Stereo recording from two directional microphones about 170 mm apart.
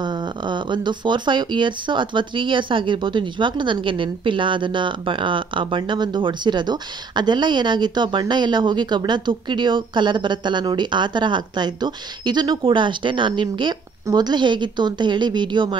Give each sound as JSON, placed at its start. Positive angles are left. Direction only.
{"t": 0.0, "sound": "speech", "side_deg": -25}